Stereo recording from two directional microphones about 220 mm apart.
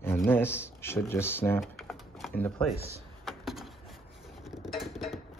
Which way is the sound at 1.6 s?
Centre (ahead or behind).